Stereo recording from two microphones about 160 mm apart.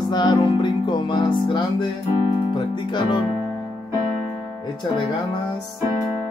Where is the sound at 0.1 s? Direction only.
25° left (ahead or behind).